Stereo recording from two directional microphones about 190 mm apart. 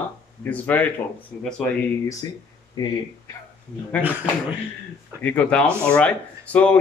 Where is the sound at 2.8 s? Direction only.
20° left (ahead or behind).